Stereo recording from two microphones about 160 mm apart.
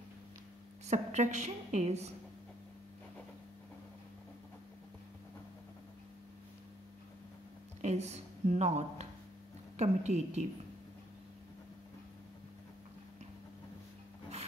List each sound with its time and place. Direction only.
0.8 s a woman's voice: 45° right (ahead or behind)
7.8 s a woman's voice: 45° right (ahead or behind)